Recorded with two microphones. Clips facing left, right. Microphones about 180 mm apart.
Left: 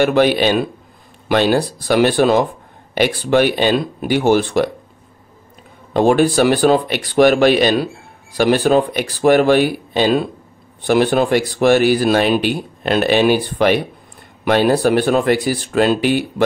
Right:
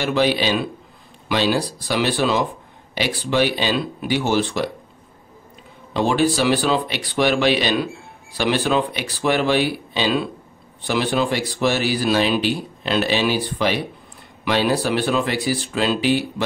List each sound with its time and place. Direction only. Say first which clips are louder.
0.0 s speech: left 6 dB; 55° left (ahead or behind)
5.9 s speech: left 6 dB; 50° left (ahead or behind)